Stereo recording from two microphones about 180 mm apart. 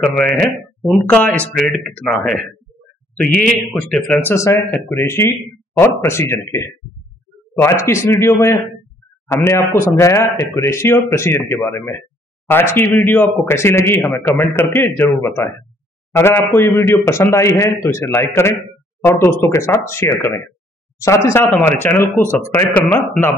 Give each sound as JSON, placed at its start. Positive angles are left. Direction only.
{"t": 0.0, "sound": "speech", "side_deg": 5}